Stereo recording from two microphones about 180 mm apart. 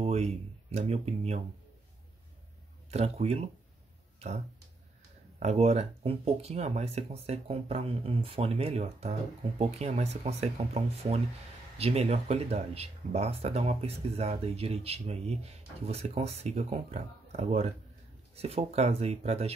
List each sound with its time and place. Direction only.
0.0 s speech: 35° right (ahead or behind)
2.9 s speech: 35° right (ahead or behind)
5.4 s speech: 35° right (ahead or behind)